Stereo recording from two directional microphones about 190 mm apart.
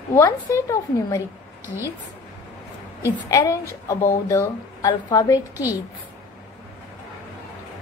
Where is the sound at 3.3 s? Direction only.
15° left (ahead or behind).